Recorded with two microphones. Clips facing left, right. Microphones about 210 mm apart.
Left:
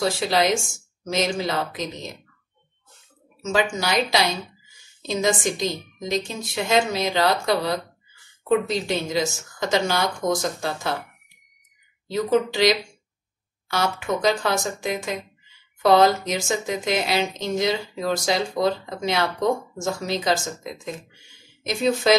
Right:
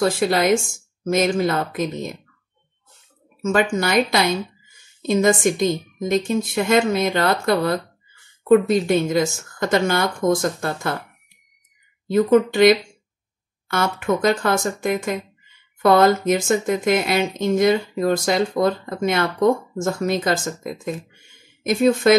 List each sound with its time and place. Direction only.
0.0 s speech: 55° right (ahead or behind)
3.4 s speech: 55° right (ahead or behind)
12.1 s speech: 55° right (ahead or behind)